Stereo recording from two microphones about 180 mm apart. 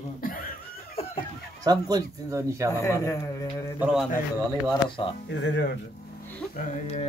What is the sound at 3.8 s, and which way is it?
Speech, centre (ahead or behind).